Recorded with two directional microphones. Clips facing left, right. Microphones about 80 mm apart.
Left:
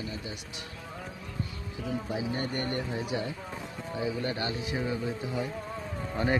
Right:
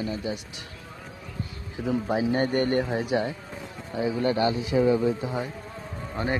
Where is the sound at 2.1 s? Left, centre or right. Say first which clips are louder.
Right 10 dB; right.